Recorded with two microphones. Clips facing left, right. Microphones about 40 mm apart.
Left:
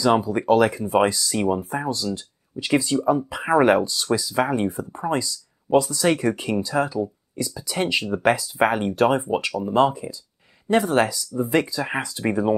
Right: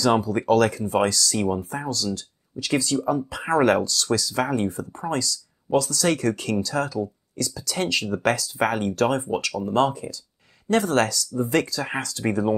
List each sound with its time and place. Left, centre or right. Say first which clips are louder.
0.0 s speech: left 1 dB; centre